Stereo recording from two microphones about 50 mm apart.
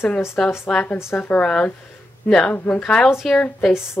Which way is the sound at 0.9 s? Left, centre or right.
Left.